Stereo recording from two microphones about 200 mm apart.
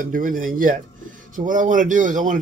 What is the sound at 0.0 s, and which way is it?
Speech, 40° right (ahead or behind).